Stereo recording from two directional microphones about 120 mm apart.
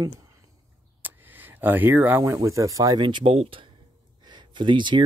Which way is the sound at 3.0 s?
40° right (ahead or behind).